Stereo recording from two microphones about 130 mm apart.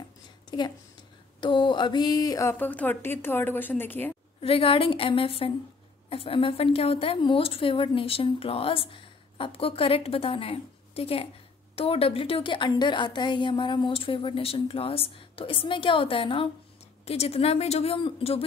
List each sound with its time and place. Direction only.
0.5 s a woman's voice: 35° left (ahead or behind)
1.4 s a sound: 35° left (ahead or behind)
2.5 s a woman's voice: 10° left (ahead or behind)
4.4 s a woman's voice: 45° left (ahead or behind)